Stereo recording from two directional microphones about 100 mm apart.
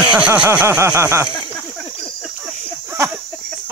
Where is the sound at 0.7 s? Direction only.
25° right (ahead or behind).